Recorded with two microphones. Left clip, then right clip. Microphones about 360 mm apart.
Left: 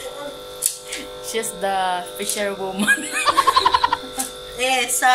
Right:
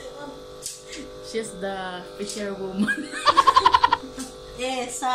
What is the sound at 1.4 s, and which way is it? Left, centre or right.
Music, left.